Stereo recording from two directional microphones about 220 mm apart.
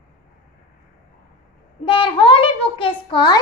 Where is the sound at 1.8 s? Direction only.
25° left (ahead or behind).